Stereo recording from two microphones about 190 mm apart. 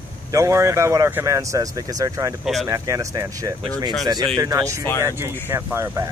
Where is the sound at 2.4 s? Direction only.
Centre (ahead or behind).